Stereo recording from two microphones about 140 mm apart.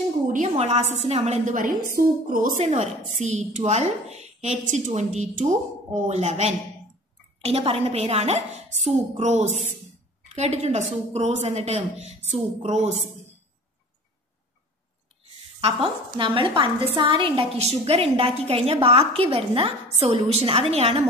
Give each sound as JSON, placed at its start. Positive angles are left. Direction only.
{"t": 0.3, "sound": "a woman's voice", "side_deg": -55}
{"t": 2.0, "sound": "a woman's voice", "side_deg": -80}
{"t": 2.6, "sound": "a woman's voice", "side_deg": -55}
{"t": 15.6, "sound": "a woman's voice", "side_deg": -40}